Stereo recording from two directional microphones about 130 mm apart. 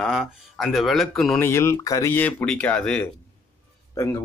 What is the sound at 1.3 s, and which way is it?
Speech, 20° left (ahead or behind).